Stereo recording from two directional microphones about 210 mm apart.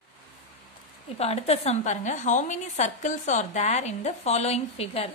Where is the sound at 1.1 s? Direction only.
30° left (ahead or behind).